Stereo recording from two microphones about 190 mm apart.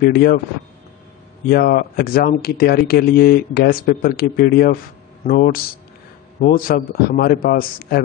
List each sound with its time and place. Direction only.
0.0 s speech: 55° left (ahead or behind)
1.5 s speech: 55° left (ahead or behind)